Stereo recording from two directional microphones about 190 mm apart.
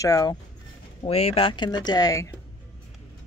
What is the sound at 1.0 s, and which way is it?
Speech, 30° left (ahead or behind).